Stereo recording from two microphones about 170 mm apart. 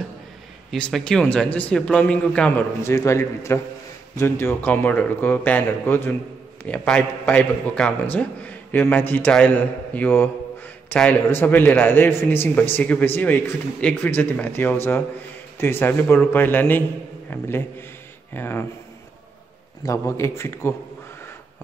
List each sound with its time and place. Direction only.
0.7 s a man's voice: 5° left (ahead or behind)
19.8 s a man's voice: 15° left (ahead or behind)